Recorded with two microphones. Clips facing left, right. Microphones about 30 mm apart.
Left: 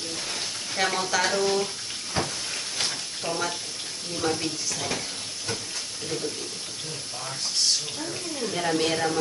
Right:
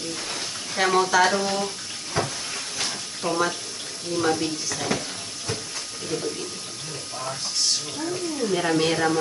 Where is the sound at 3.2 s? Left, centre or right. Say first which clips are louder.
Right 5 dB; centre.